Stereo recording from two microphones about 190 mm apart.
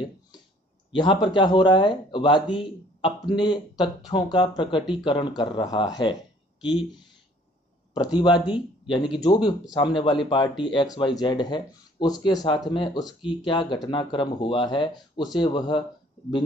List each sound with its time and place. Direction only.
0.9 s speech: 25° left (ahead or behind)
8.2 s speech: 25° left (ahead or behind)